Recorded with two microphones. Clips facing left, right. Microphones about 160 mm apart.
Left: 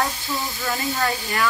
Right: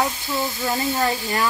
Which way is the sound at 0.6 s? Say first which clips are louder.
Right 2 dB; 20° right (ahead or behind).